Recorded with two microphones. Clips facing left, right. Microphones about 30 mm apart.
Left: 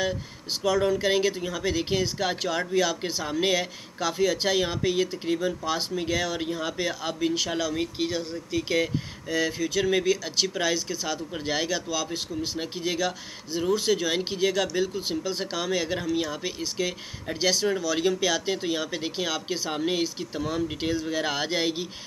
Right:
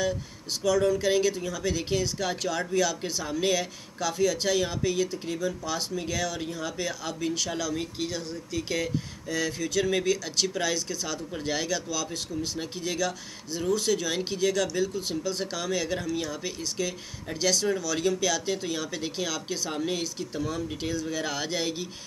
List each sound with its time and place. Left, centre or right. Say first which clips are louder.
0.7 s speech: even; left